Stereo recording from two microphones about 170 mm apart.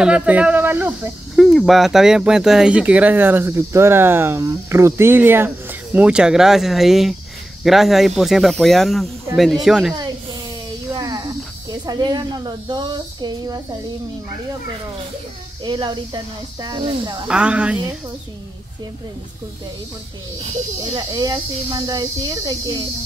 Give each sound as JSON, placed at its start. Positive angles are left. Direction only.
{"t": 0.0, "sound": "speech", "side_deg": -5}
{"t": 1.3, "sound": "speech", "side_deg": 0}
{"t": 10.9, "sound": "cricket", "side_deg": -20}
{"t": 11.8, "sound": "speech", "side_deg": -25}
{"t": 15.6, "sound": "speech", "side_deg": -25}
{"t": 17.3, "sound": "speech", "side_deg": -5}
{"t": 20.8, "sound": "speech", "side_deg": -25}